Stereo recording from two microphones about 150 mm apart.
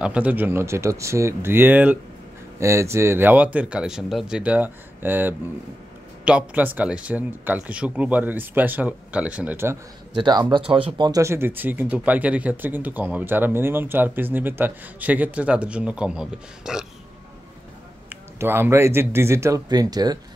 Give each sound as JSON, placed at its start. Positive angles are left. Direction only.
{"t": 0.0, "sound": "speech", "side_deg": -10}
{"t": 10.1, "sound": "speech", "side_deg": -30}
{"t": 18.1, "sound": "speech", "side_deg": -15}